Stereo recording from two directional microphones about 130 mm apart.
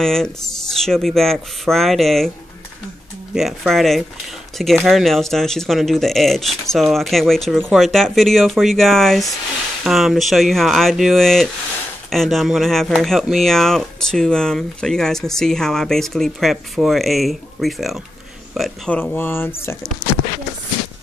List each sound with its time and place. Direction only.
0.0 s speech: 5° left (ahead or behind)
3.3 s speech: centre (ahead or behind)
18.9 s speech: 10° left (ahead or behind)
20.0 s a sound: 30° right (ahead or behind)